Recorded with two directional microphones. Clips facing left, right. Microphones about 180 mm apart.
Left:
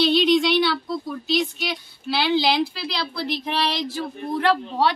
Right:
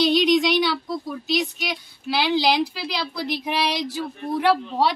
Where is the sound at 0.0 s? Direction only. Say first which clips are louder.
Even; 15° right (ahead or behind).